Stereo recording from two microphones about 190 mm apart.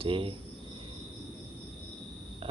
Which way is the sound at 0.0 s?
30° right (ahead or behind).